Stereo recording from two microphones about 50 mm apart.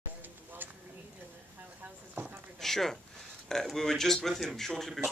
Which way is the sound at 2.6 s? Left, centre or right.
Centre.